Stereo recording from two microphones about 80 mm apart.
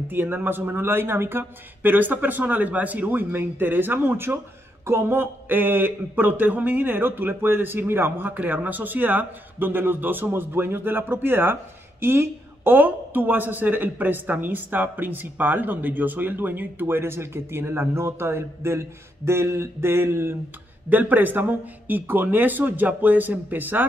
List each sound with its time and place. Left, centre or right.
0.1 s a woman's voice: right